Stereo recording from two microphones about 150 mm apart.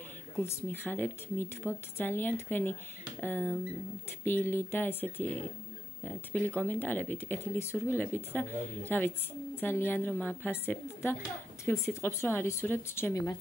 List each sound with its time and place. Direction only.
0.4 s speech: 15° left (ahead or behind)
6.5 s speech: 10° left (ahead or behind)